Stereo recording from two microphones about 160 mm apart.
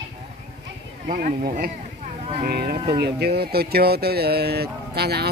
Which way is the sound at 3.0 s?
85° right.